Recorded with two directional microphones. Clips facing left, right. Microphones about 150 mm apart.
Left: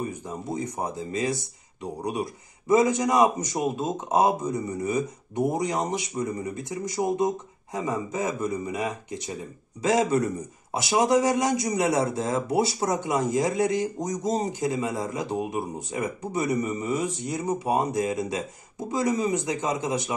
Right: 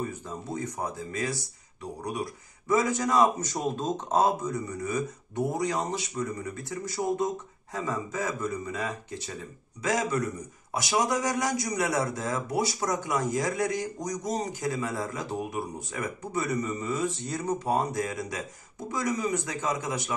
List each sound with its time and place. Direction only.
0.0 s speech: 15° left (ahead or behind)
2.7 s speech: 20° left (ahead or behind)